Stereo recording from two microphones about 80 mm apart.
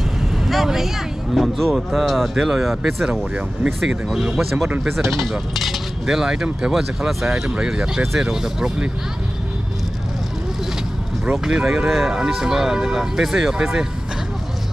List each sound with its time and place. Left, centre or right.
0.5 s vehicle: centre
1.3 s speech: centre
11.3 s speech: centre